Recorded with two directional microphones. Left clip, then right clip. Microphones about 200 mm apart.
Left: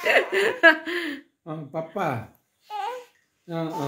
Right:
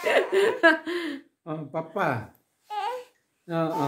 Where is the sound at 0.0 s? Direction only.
10° left (ahead or behind).